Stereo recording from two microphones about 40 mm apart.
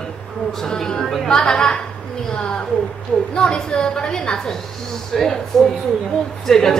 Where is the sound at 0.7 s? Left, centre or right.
Centre.